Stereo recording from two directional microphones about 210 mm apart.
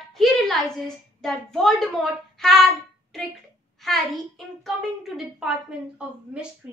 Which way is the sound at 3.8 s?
Centre (ahead or behind).